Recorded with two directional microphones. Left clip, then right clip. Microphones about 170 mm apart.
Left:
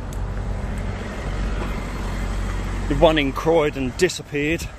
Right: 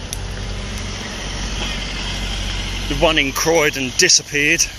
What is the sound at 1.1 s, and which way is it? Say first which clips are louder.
Vehicle: right 4 dB; 45° right (ahead or behind).